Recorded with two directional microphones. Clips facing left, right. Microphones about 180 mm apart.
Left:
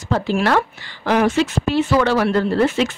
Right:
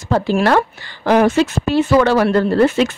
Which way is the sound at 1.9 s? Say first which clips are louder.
Right 5 dB; 50° right (ahead or behind).